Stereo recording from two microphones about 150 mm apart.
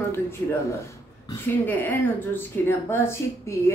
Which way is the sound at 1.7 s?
15° left (ahead or behind).